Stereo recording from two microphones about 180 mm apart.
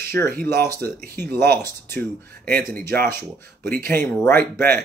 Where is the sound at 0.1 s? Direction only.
10° left (ahead or behind).